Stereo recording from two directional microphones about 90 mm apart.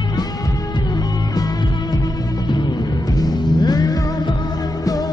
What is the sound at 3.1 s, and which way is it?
Music, 45° left (ahead or behind).